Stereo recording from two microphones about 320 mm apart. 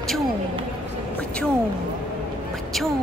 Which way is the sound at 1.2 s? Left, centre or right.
Centre.